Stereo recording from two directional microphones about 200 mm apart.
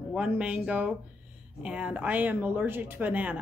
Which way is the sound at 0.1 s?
5° right (ahead or behind).